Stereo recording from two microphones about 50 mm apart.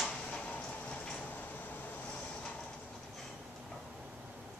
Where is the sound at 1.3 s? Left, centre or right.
Left.